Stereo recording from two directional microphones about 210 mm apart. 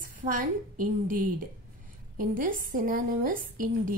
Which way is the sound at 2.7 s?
40° right (ahead or behind).